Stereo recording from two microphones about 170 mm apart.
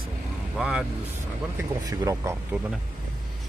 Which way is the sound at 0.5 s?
5° right (ahead or behind).